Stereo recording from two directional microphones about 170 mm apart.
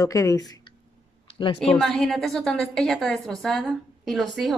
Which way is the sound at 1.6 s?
5° left (ahead or behind).